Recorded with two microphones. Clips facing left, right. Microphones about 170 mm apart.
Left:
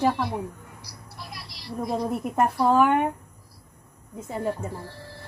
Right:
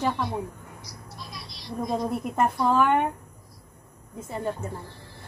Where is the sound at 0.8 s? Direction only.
65° left (ahead or behind).